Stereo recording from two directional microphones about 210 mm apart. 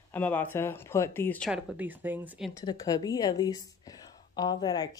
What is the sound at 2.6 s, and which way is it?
Speech, 15° left (ahead or behind).